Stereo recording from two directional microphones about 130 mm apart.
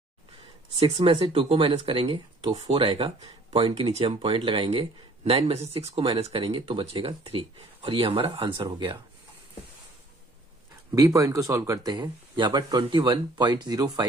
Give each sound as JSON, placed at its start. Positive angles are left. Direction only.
{"t": 0.8, "sound": "speech", "side_deg": -40}
{"t": 11.0, "sound": "speech", "side_deg": -25}